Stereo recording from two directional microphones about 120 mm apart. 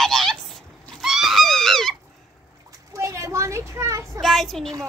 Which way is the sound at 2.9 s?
25° right (ahead or behind).